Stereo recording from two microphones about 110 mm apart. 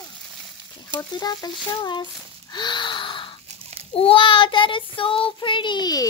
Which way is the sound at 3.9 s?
55° left (ahead or behind).